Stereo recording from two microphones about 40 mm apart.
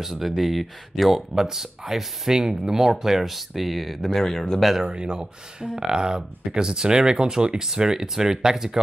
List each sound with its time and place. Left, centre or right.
0.0 s speech: centre
4.8 s speech: right